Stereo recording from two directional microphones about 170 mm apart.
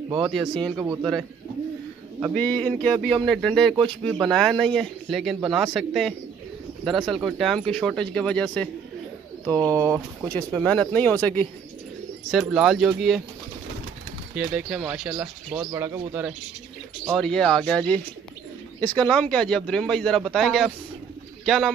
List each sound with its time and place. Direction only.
0.3 s speech: centre (ahead or behind)
0.7 s speech: 25° right (ahead or behind)
2.3 s speech: 5° left (ahead or behind)
9.5 s speech: 20° right (ahead or behind)
10.3 s speech: 5° left (ahead or behind)
12.3 s speech: 5° right (ahead or behind)
14.3 s speech: 5° right (ahead or behind)
15.6 s speech: 20° right (ahead or behind)
16.1 s speech: 10° right (ahead or behind)
17.1 s speech: 5° left (ahead or behind)